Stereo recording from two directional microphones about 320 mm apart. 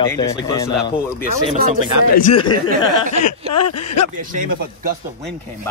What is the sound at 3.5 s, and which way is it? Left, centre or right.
Speech, left.